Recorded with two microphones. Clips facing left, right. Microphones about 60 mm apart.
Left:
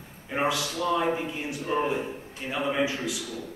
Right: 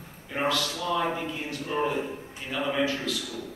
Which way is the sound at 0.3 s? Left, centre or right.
Centre.